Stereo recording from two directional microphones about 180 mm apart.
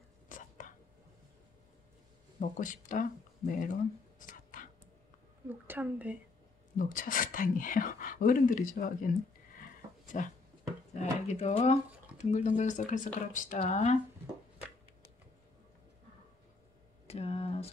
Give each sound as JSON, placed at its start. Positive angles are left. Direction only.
{"t": 0.3, "sound": "whispering", "side_deg": 45}
{"t": 2.4, "sound": "speech", "side_deg": 45}
{"t": 4.2, "sound": "whispering", "side_deg": 50}
{"t": 5.5, "sound": "a woman's voice", "side_deg": -10}
{"t": 6.8, "sound": "speech", "side_deg": 50}
{"t": 17.1, "sound": "a sound", "side_deg": 35}